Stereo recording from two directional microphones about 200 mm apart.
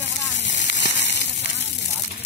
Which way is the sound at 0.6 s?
60° left (ahead or behind).